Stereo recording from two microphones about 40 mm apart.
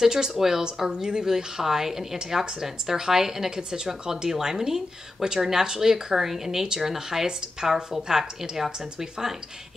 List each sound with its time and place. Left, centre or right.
0.0 s speech: centre